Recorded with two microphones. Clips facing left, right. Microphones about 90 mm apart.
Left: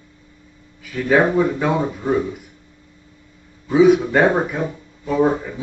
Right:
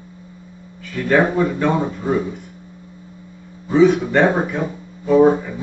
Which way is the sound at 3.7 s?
5° left (ahead or behind).